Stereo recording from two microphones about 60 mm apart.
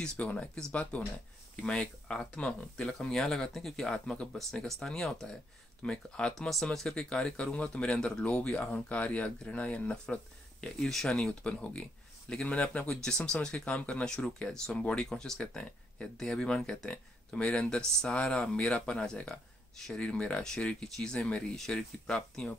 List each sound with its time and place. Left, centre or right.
0.0 s speech: centre
10.8 s speech: centre